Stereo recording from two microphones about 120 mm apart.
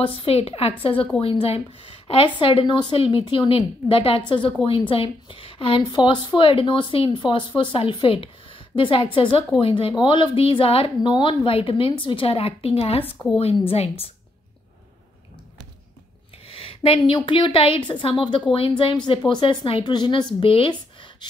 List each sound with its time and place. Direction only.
0.0 s a woman's voice: 45° left (ahead or behind)
16.4 s a woman's voice: 50° left (ahead or behind)